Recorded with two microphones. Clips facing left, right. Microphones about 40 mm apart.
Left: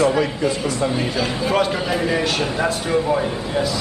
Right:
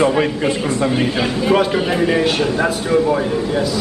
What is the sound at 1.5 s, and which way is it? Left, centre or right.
A man's voice, centre.